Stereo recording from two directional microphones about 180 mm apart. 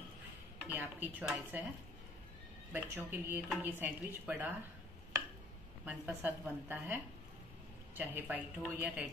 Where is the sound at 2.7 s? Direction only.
10° right (ahead or behind).